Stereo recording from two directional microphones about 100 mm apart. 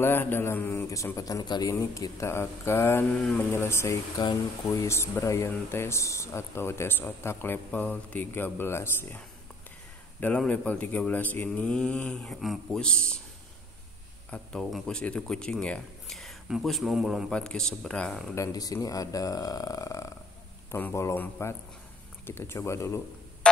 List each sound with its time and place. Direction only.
0.0 s speech: 20° left (ahead or behind); by 1.7 s 40° left (ahead or behind)
1.7 s speech: 30° left (ahead or behind)
3.1 s speech: 10° left (ahead or behind)
3.5 s speech: 25° left (ahead or behind)
10.2 s speech: 10° left (ahead or behind)
14.3 s speech: 5° left (ahead or behind)
17.3 s speech: 10° left (ahead or behind)
18.3 s speech: 35° left (ahead or behind)
23.4 s music: 10° left (ahead or behind)